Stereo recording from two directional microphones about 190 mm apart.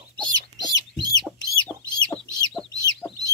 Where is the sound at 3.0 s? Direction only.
10° left (ahead or behind).